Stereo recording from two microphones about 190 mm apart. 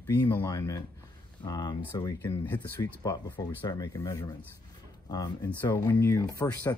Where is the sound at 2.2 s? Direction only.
10° left (ahead or behind).